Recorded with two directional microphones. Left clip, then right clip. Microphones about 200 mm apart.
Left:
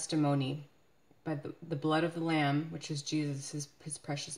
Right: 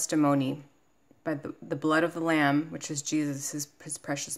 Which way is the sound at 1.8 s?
25° right (ahead or behind).